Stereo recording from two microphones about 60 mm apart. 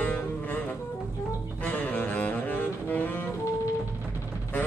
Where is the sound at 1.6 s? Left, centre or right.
Left.